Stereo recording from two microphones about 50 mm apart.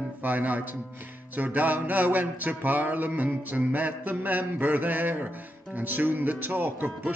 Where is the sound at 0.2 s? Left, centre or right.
Right.